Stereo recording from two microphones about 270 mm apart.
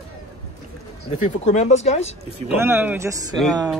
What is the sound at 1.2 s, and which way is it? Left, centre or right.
Speech, left.